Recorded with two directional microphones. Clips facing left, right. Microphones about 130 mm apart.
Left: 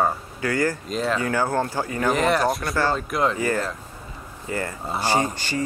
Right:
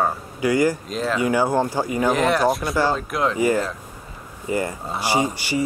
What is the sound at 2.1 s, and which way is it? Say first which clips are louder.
A man's voice: right 1 dB; centre (ahead or behind).